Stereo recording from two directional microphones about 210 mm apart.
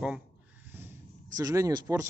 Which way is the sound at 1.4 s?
15° right (ahead or behind).